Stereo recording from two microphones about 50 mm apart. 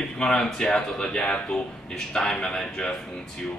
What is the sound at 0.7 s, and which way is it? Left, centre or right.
Speech, centre.